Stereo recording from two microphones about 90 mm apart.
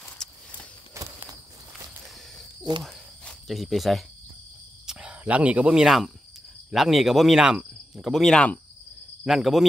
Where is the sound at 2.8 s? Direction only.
5° left (ahead or behind).